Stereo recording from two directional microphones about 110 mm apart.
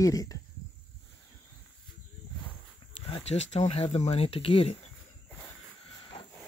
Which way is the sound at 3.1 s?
70° left (ahead or behind).